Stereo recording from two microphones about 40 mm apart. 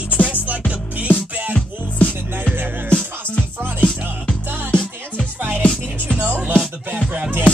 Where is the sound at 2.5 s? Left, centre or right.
Right.